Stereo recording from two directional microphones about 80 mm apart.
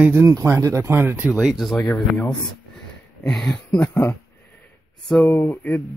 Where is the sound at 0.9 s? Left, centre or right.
Right.